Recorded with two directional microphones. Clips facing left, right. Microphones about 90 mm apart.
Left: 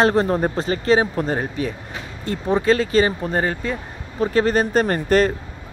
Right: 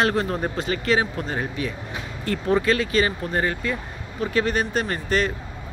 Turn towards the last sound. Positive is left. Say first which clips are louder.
# left 6 dB
turn(degrees=45)  # may be behind; listen again after turning